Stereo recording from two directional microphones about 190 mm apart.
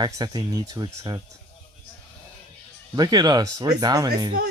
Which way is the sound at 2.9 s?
20° right (ahead or behind).